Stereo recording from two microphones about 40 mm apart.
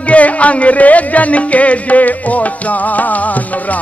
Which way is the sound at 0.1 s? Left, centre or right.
Left.